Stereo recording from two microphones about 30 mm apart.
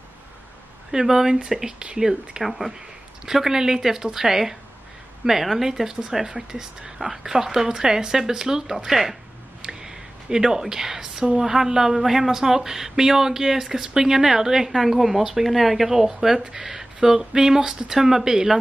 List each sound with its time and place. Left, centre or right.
0.9 s speech: centre
3.4 s speech: centre
8.7 s speech: centre
9.6 s a sound: right
11.3 s speech: centre
14.7 s speech: centre